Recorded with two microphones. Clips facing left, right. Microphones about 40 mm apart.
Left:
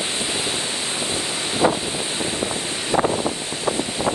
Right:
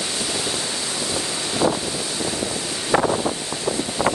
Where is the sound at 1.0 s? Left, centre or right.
Left.